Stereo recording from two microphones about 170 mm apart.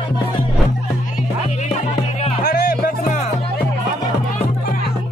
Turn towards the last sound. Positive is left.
turn(degrees=60)  # may be behind; listen again after turning